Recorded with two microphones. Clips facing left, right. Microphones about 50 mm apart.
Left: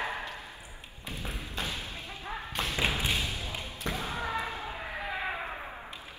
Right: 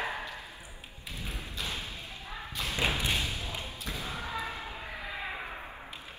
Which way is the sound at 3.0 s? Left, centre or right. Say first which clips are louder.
Even; centre.